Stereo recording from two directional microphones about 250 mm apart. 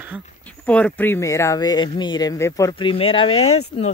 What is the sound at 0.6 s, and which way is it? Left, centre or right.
Speech, centre.